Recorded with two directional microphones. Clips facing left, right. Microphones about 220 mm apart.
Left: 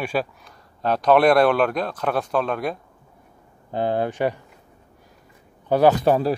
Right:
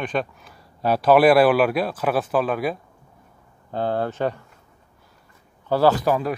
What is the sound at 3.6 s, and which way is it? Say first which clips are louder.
Speech: left 1 dB; 15° left (ahead or behind).